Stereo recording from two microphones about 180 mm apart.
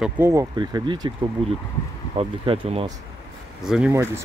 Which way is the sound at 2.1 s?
30° right (ahead or behind).